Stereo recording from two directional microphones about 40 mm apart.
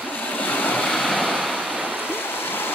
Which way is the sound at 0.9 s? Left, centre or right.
Centre.